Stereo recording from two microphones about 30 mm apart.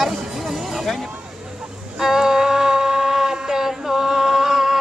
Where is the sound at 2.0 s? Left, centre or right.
Centre.